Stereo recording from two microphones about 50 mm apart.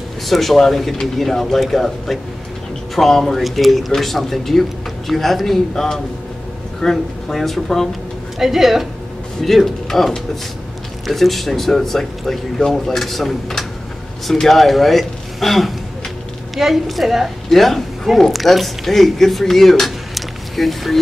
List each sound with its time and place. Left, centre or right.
0.3 s speech: centre
8.4 s a woman's voice: centre